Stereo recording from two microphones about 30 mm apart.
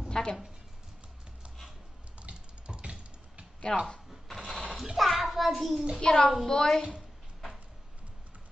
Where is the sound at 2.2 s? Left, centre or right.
Right.